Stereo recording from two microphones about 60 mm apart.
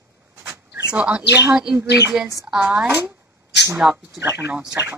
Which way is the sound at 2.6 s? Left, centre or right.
Right.